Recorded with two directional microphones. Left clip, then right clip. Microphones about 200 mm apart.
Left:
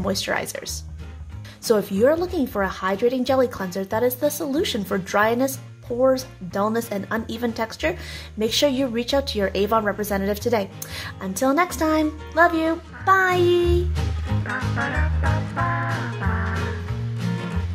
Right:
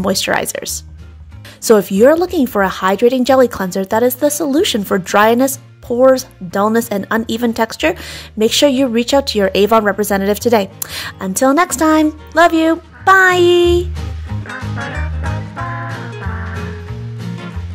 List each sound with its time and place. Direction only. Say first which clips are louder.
0.0 s speech: right 9 dB; 40° right (ahead or behind)
13.9 s music: even; centre (ahead or behind)